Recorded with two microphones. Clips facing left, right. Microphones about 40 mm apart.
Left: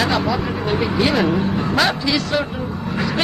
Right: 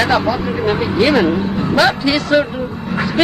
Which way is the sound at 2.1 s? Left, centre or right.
Right.